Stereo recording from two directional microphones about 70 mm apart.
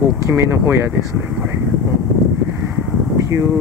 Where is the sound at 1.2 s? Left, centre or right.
Centre.